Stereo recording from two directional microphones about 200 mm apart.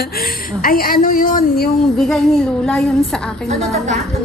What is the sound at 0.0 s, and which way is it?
A woman's voice, 50° left (ahead or behind).